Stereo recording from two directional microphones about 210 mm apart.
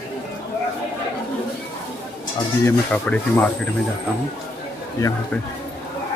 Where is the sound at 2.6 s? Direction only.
5° left (ahead or behind).